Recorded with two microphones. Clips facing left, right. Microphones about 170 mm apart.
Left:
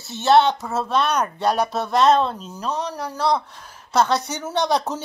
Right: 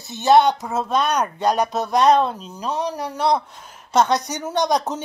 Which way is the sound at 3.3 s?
5° right (ahead or behind).